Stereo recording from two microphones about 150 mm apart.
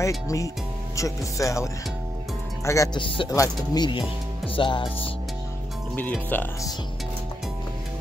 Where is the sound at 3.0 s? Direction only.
35° left (ahead or behind).